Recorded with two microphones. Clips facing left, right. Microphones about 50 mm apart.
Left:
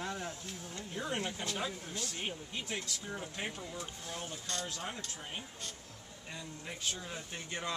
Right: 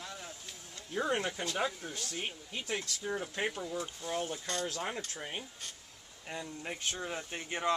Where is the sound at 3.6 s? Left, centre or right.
Centre.